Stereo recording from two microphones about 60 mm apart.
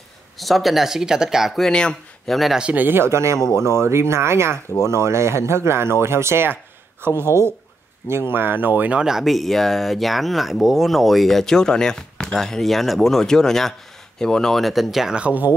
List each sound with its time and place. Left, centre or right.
0.4 s speech: centre
1.5 s speech: centre
2.3 s speech: centre
2.6 s speech: right
3.0 s speech: right
9.0 s speech: centre
15.1 s speech: right